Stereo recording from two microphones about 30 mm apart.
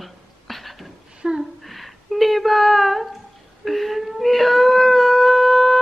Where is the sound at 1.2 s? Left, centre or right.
Centre.